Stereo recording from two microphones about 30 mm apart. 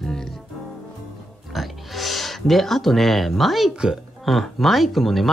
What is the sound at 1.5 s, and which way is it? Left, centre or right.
Speech, centre.